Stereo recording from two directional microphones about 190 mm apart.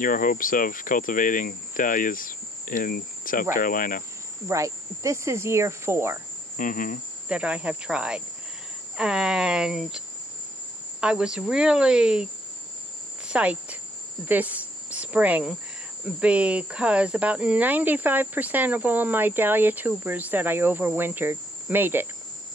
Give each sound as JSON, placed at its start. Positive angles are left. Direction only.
{"t": 0.0, "sound": "speech", "side_deg": 45}
{"t": 4.5, "sound": "speech", "side_deg": -15}
{"t": 6.5, "sound": "cricket", "side_deg": 45}
{"t": 7.2, "sound": "speech", "side_deg": -5}
{"t": 13.3, "sound": "speech", "side_deg": -5}